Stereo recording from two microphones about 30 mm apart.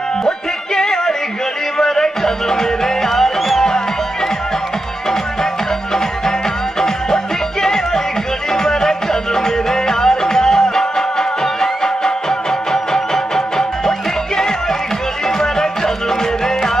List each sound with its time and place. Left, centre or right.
0.7 s music: centre
7.6 s music: centre